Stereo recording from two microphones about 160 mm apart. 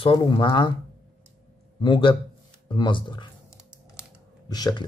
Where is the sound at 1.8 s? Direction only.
30° left (ahead or behind).